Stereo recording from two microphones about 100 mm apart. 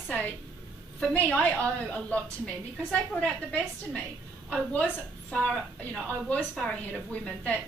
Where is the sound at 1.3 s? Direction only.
15° left (ahead or behind).